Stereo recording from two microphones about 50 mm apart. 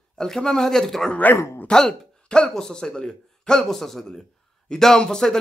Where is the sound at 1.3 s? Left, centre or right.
Left.